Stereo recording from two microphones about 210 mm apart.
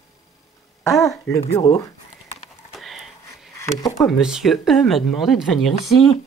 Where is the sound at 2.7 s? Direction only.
Centre (ahead or behind).